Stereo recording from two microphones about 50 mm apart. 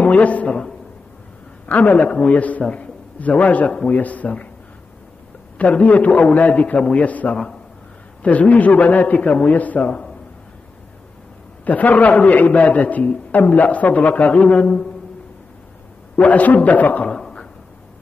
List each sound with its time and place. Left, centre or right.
0.0 s a man's voice: left
1.7 s a man's voice: left
5.6 s a man's voice: left
11.6 s a man's voice: left
16.2 s a man's voice: left
17.0 s a sound: centre